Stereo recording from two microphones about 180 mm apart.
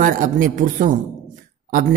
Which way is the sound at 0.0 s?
45° right (ahead or behind).